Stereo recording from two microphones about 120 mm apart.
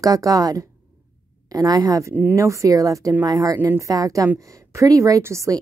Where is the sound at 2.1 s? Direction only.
15° right (ahead or behind).